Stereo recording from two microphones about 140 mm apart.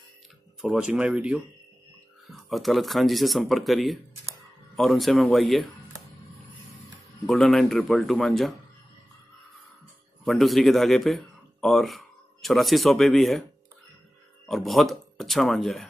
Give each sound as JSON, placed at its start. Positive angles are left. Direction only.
{"t": 0.6, "sound": "speech", "side_deg": -5}
{"t": 6.9, "sound": "speech", "side_deg": 0}
{"t": 10.2, "sound": "a man's voice", "side_deg": 0}
{"t": 14.5, "sound": "speech", "side_deg": 0}